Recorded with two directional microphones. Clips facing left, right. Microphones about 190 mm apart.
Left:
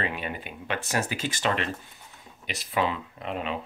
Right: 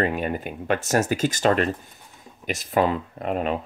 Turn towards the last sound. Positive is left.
turn(degrees=-45)  # may be behind; listen again after turning